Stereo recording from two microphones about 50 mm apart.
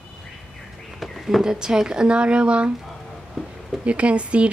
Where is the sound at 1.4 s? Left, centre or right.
Centre.